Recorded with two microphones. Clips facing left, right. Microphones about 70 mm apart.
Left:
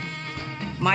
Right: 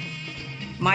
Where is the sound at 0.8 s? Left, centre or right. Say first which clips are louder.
Even; centre.